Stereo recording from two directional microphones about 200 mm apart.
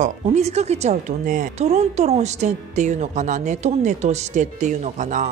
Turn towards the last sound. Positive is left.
turn(degrees=-40)  # may be behind; listen again after turning